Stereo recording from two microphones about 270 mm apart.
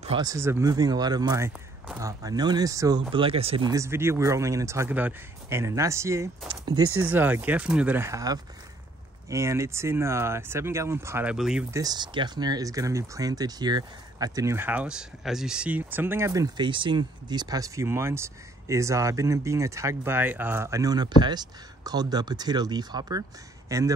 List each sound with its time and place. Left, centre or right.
0.0 s speech: centre
6.8 s speech: right
7.1 s speech: centre
11.8 s speech: centre